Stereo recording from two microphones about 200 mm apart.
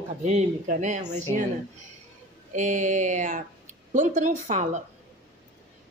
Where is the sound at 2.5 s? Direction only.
40° right (ahead or behind).